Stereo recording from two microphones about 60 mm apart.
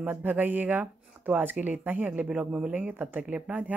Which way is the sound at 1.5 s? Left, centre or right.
Right.